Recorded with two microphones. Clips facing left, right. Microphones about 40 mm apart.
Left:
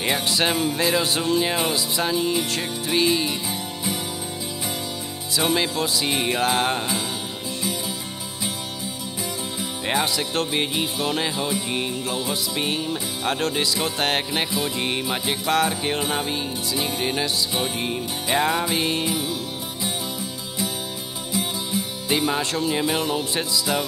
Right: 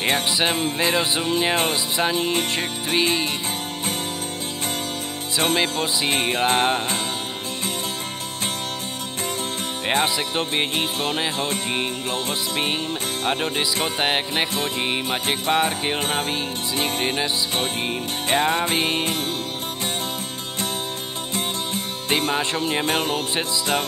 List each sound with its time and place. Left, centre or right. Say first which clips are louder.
0.6 s music: even; right
5.5 s music: even; right
9.8 s music: right 2 dB; right
12.3 s music: right 1 dB; right
18.7 s music: right 1 dB; right
21.3 s music: left 1 dB; right
22.3 s music: right 1 dB; right